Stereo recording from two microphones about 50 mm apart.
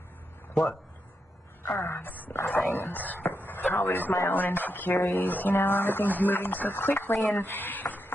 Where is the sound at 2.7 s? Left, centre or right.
Left.